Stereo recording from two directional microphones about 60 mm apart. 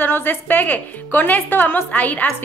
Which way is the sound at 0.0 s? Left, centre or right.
Left.